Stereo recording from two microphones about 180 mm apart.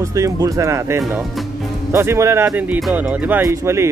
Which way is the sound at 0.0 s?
15° right (ahead or behind).